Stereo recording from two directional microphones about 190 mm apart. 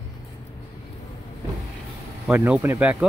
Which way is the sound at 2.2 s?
5° right (ahead or behind).